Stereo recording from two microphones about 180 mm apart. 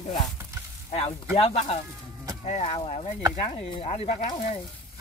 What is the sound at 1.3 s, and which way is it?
Speech, 35° left (ahead or behind).